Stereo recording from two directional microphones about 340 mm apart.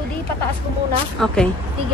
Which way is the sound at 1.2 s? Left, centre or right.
Centre.